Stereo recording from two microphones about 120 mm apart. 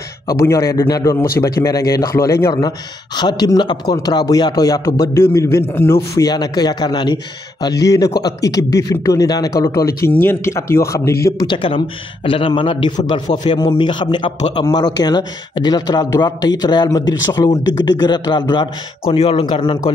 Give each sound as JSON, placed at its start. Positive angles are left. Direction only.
{"t": 0.3, "sound": "a man's voice", "side_deg": 25}
{"t": 3.2, "sound": "speech", "side_deg": 35}
{"t": 6.1, "sound": "a man's voice", "side_deg": 35}
{"t": 11.4, "sound": "speech", "side_deg": 45}
{"t": 19.1, "sound": "speech", "side_deg": 55}
{"t": 19.4, "sound": "speech", "side_deg": 40}